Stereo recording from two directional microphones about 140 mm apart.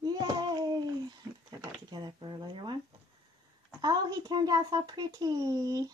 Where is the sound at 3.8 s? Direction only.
30° right (ahead or behind).